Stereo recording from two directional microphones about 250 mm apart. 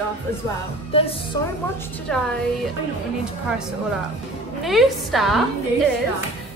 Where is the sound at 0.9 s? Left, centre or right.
Left.